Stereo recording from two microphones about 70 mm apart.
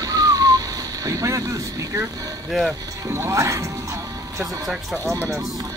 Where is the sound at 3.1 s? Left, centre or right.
Right.